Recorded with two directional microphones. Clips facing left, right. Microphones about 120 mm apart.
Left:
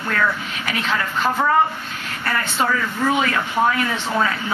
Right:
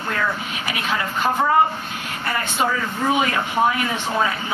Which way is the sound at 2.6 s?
15° right (ahead or behind).